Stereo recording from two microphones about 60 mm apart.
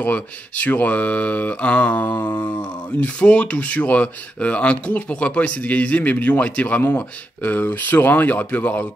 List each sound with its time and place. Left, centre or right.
0.0 s speech: left